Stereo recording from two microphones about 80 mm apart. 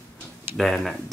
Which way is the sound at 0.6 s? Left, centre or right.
Centre.